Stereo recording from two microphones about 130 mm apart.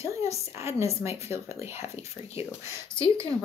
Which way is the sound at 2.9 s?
10° left (ahead or behind).